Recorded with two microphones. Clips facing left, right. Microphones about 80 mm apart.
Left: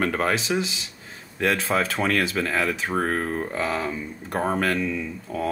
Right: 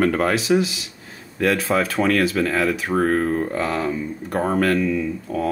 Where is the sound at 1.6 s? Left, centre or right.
Centre.